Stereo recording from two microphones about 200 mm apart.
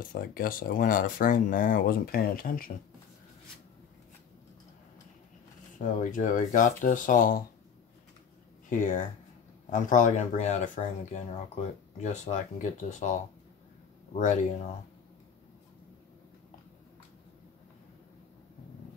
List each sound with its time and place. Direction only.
0.0 s speech: 45° left (ahead or behind)
5.8 s speech: 40° left (ahead or behind)
8.6 s speech: 40° left (ahead or behind)
14.1 s speech: 40° left (ahead or behind)